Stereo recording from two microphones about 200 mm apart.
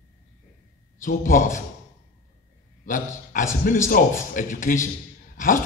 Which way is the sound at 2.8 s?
40° left (ahead or behind).